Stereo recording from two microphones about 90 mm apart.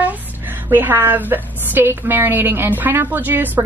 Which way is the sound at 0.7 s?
20° right (ahead or behind).